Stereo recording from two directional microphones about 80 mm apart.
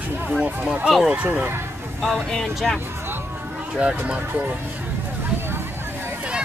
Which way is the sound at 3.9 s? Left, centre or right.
Centre.